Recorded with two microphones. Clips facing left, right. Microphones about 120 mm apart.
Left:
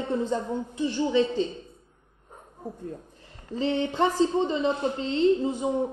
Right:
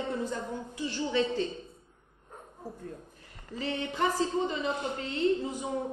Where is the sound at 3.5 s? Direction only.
30° left (ahead or behind).